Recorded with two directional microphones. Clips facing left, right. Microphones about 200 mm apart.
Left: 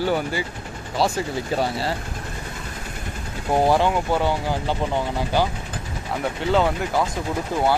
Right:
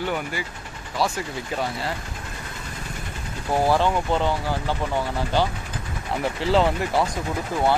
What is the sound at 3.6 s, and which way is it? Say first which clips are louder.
Speech: left 1 dB; 15° left (ahead or behind).